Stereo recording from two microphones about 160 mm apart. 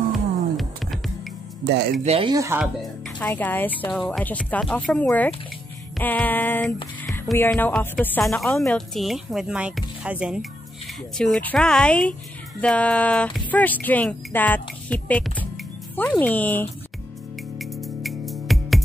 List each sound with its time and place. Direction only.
0.1 s music: centre (ahead or behind)
1.7 s speech: 90° right
2.0 s speech: 35° right (ahead or behind)
2.3 s speech: 20° right (ahead or behind)
3.3 s speech: 10° left (ahead or behind)
6.6 s music: centre (ahead or behind)
7.3 s speech: 10° left (ahead or behind)
17.6 s music: centre (ahead or behind)